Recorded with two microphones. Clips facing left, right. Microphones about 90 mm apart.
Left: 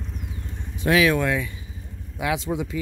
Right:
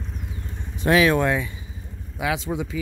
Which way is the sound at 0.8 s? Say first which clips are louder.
Right 1 dB; 35° right (ahead or behind).